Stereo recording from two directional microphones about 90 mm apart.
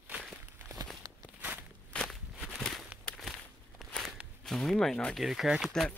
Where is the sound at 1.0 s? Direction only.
45° right (ahead or behind).